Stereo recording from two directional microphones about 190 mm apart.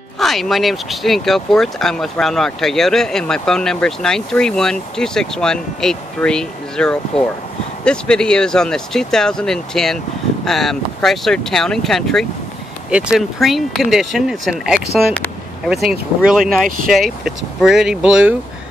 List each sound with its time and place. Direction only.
0.2 s speech: centre (ahead or behind)
16.6 s speech: 45° right (ahead or behind)
16.9 s speech: centre (ahead or behind)